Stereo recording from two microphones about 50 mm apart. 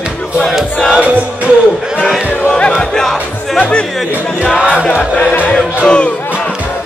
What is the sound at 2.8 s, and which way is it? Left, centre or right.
Music, centre.